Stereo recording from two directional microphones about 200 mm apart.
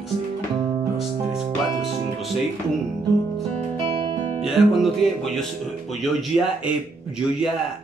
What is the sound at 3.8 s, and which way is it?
Music, 25° right (ahead or behind).